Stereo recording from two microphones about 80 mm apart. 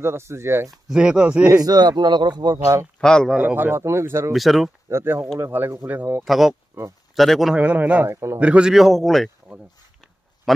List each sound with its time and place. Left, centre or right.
0.0 s speech: right
0.7 s speech: centre
1.0 s speech: centre
1.5 s speech: right
3.0 s a man's voice: centre
3.3 s speech: right
4.3 s a man's voice: centre
4.8 s speech: right
6.2 s a man's voice: centre
6.7 s speech: right
7.2 s a man's voice: centre
7.5 s speech: centre
8.1 s speech: right
8.4 s a man's voice: centre